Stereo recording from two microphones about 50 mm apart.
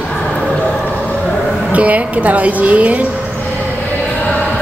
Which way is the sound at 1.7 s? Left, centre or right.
Right.